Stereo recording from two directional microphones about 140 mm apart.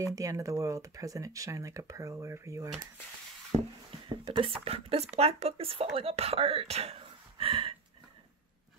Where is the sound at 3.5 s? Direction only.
40° right (ahead or behind).